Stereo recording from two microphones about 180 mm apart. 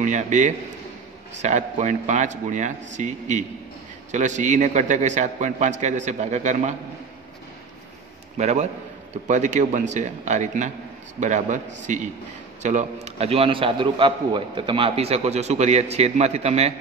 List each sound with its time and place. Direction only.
0.0 s a man's voice: 45° right (ahead or behind)
8.4 s a man's voice: 40° right (ahead or behind)